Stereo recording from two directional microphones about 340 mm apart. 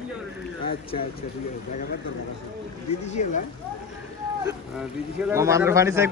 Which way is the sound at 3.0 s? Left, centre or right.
Left.